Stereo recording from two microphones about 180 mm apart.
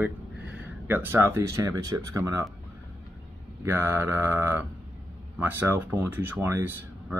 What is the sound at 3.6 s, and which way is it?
Speech, 10° right (ahead or behind).